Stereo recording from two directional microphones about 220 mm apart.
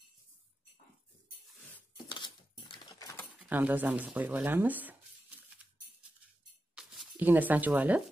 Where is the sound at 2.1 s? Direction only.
20° left (ahead or behind).